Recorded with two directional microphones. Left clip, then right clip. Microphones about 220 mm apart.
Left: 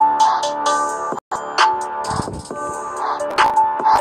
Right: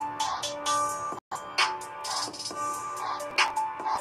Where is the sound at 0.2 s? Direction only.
35° left (ahead or behind).